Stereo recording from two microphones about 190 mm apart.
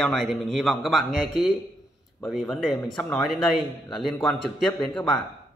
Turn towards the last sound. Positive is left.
turn(degrees=0)  # may be behind; listen again after turning